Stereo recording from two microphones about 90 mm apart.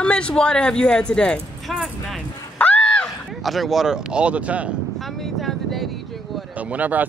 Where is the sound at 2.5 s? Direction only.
15° left (ahead or behind).